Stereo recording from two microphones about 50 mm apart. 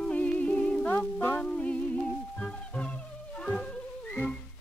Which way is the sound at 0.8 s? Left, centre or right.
Left.